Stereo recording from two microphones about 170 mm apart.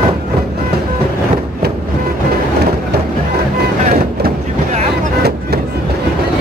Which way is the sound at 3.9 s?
50° right (ahead or behind).